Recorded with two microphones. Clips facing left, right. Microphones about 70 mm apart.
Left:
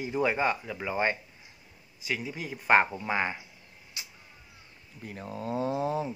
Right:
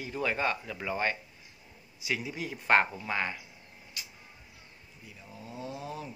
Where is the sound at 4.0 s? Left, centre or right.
Left.